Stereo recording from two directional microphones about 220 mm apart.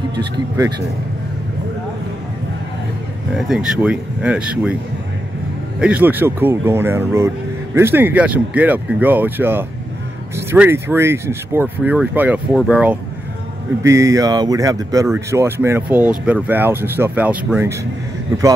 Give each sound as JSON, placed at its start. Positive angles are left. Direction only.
{"t": 0.1, "sound": "speech", "side_deg": -20}
{"t": 3.3, "sound": "speech", "side_deg": 0}
{"t": 5.8, "sound": "speech", "side_deg": -5}